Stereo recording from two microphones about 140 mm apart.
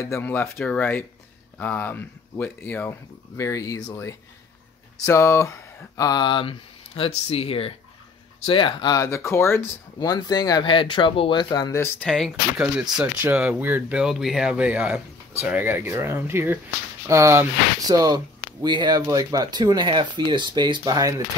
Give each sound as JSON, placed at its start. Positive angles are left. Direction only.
{"t": 0.0, "sound": "speech", "side_deg": 15}
{"t": 8.9, "sound": "speech", "side_deg": 20}
{"t": 12.1, "sound": "speech", "side_deg": 0}